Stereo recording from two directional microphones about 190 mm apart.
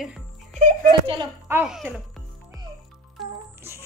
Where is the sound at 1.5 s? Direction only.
5° right (ahead or behind).